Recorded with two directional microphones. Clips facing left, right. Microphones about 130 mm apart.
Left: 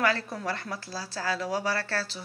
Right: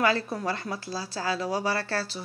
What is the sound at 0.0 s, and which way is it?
Speech, 15° right (ahead or behind).